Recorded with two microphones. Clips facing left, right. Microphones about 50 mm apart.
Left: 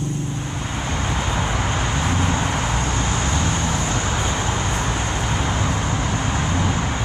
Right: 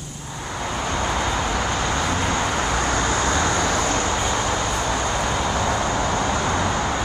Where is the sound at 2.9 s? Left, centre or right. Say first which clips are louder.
Right 2 dB; right.